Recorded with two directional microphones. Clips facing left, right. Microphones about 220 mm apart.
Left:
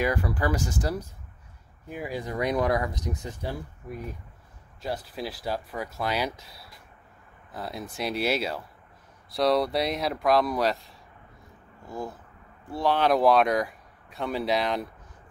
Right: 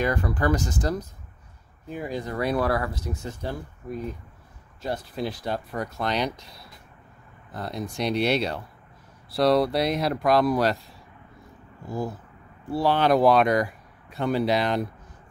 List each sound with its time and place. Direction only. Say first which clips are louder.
0.0 s speech: right 2 dB; 10° left (ahead or behind)
4.8 s speech: right 3 dB; centre (ahead or behind)
12.7 s speech: right 2 dB; centre (ahead or behind)